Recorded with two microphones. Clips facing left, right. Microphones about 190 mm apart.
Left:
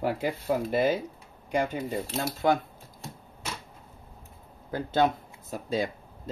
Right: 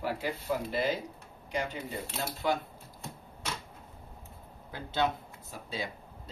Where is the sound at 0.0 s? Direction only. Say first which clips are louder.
Left 5 dB; 50° left (ahead or behind).